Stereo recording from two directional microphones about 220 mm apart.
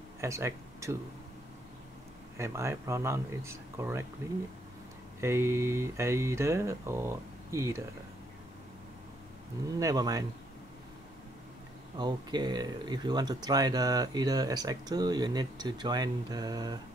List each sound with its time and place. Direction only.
0.2 s speech: 15° right (ahead or behind)
2.3 s speech: 15° right (ahead or behind)
9.8 s speech: 15° right (ahead or behind)
12.0 s speech: 20° right (ahead or behind)